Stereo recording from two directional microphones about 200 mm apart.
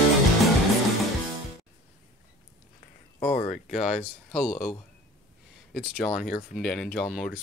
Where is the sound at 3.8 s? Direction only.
35° left (ahead or behind).